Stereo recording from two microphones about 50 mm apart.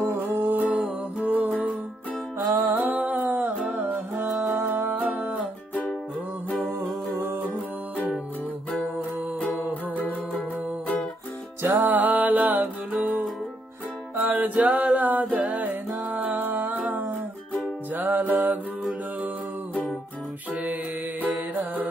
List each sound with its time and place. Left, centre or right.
0.2 s music: right
2.5 s music: right
4.3 s music: centre
4.9 s music: right
6.8 s music: right
9.5 s music: left
11.6 s music: right
14.1 s music: right
21.3 s music: right